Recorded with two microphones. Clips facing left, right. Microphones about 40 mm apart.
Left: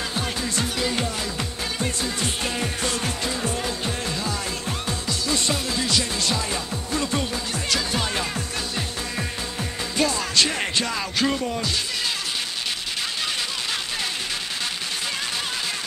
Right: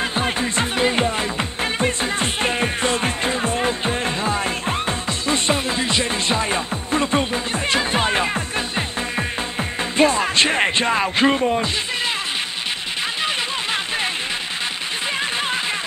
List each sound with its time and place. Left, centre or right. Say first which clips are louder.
0.0 s music: right 6 dB; right
13.2 s music: right 5 dB; right